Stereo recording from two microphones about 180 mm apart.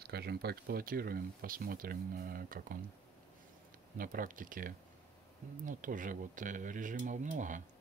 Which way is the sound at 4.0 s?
50° right (ahead or behind).